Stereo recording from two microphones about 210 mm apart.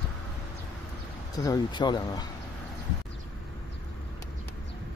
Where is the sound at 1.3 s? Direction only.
15° left (ahead or behind).